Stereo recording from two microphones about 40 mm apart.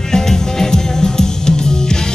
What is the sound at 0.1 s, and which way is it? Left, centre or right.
Music, centre.